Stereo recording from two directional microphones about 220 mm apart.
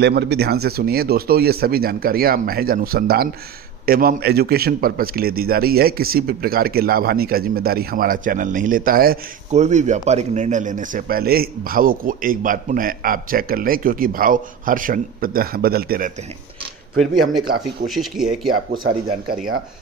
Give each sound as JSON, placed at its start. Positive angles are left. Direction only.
{"t": 0.0, "sound": "a man's voice", "side_deg": -50}
{"t": 17.8, "sound": "speech", "side_deg": 0}
{"t": 18.7, "sound": "speech", "side_deg": -45}